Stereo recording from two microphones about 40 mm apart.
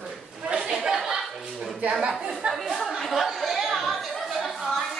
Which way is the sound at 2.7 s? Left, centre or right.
Centre.